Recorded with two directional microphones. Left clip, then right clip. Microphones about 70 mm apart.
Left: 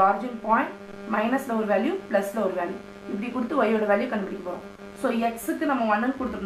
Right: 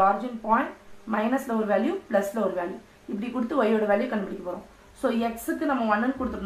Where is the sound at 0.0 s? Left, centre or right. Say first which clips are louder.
Left 1 dB; centre.